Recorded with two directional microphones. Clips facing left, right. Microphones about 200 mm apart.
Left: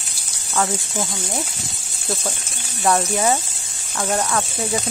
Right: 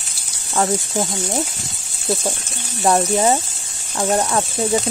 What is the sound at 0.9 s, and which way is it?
Speech, 20° right (ahead or behind).